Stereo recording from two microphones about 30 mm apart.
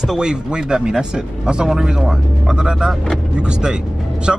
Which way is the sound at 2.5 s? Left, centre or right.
Right.